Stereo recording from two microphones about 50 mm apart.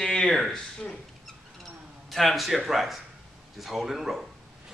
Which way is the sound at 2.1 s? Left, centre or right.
Centre.